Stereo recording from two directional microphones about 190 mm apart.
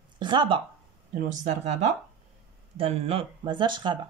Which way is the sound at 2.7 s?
30° right (ahead or behind).